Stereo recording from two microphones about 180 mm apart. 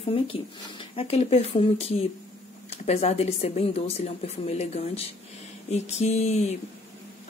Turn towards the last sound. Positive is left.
turn(degrees=35)  # may be behind; listen again after turning